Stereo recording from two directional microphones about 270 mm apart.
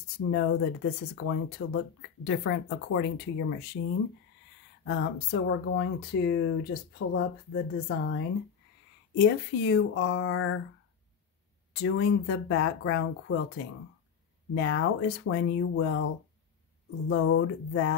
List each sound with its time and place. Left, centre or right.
0.3 s speech: left
4.8 s speech: left
11.7 s speech: left
14.5 s speech: left
17.1 s a sound: left